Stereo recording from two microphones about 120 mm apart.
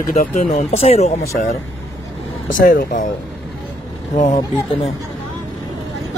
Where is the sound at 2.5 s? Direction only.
90° left.